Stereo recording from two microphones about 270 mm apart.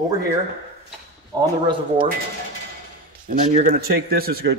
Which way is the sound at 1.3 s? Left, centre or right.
Centre.